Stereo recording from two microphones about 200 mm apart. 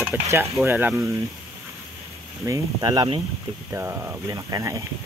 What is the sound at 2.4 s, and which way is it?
Speech, 20° right (ahead or behind).